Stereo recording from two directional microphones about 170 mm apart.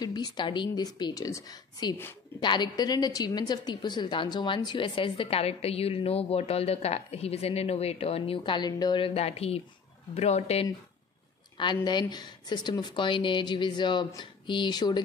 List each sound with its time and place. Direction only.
0.0 s a woman's voice: 25° left (ahead or behind)
11.5 s speech: 25° left (ahead or behind)